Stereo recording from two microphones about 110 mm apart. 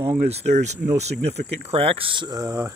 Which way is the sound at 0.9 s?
90° right.